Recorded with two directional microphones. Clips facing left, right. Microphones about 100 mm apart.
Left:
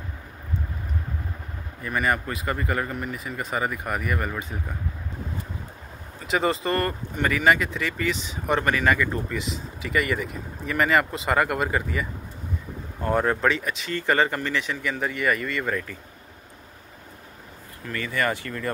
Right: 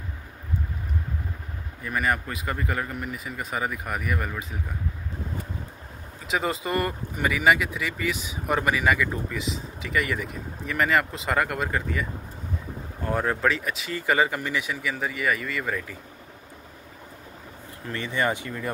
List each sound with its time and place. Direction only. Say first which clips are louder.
1.8 s speech: left 1 dB; centre (ahead or behind)
6.2 s speech: left 3 dB; centre (ahead or behind)
17.8 s speech: even; 25° right (ahead or behind)